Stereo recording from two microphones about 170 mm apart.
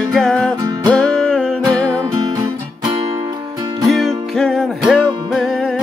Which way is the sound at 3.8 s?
Centre (ahead or behind).